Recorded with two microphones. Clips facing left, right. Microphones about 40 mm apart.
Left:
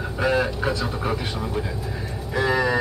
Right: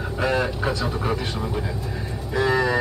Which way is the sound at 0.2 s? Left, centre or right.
Centre.